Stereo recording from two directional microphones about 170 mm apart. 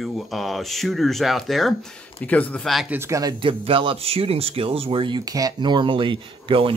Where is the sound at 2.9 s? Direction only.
20° right (ahead or behind).